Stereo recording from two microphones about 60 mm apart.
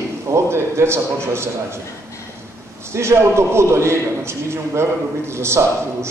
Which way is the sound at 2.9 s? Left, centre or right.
Right.